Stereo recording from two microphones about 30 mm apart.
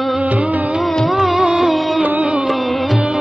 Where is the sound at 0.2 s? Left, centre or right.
Right.